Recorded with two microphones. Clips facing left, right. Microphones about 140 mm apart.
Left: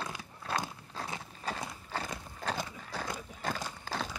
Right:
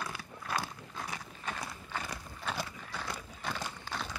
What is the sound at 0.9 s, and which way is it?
Horse, 30° left (ahead or behind).